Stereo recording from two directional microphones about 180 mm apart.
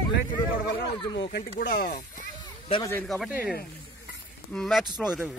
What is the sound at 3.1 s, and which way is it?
Speech, centre (ahead or behind).